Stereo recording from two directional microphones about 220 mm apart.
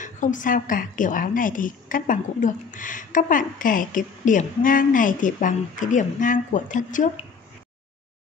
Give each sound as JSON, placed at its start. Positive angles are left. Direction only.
{"t": 0.0, "sound": "a woman's voice", "side_deg": 35}